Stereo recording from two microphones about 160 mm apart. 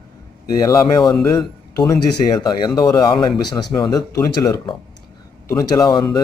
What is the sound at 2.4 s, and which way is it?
Speech, 25° left (ahead or behind).